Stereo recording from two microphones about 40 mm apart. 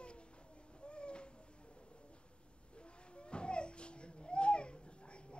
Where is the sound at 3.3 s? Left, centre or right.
Left.